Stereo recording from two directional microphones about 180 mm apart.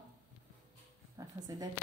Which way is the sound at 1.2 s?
20° right (ahead or behind).